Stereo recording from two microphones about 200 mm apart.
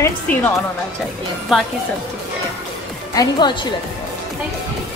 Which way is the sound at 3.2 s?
20° left (ahead or behind).